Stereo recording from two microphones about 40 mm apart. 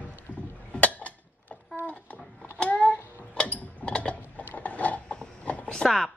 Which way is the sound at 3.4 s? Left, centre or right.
Left.